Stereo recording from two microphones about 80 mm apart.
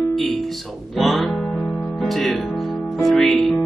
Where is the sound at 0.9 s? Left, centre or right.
Centre.